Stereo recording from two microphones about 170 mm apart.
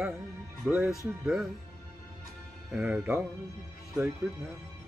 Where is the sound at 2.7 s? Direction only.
5° right (ahead or behind).